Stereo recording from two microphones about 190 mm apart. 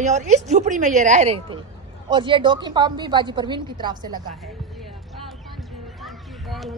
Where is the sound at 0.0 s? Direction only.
40° right (ahead or behind); by 4.2 s 20° right (ahead or behind).